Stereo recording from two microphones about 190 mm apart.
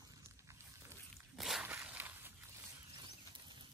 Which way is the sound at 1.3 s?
Centre (ahead or behind).